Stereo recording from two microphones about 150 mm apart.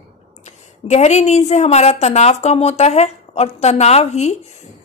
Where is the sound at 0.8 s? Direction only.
50° left (ahead or behind).